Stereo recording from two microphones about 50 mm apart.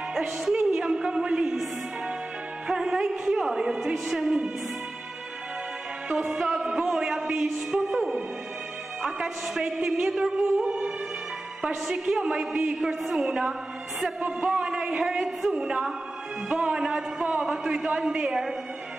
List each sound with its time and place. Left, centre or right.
0.1 s music: centre
0.7 s a sound: centre
2.7 s a woman's voice: centre
6.0 s music: right
6.3 s a woman's voice: centre
15.5 s music: centre
16.5 s a man's voice: centre